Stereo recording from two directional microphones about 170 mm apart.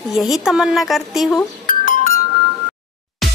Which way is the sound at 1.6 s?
50° left (ahead or behind).